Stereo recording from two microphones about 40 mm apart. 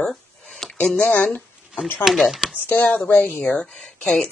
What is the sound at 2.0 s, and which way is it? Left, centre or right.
Speech, centre.